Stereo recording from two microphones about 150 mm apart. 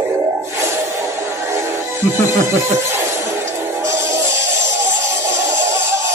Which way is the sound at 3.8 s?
20° right (ahead or behind).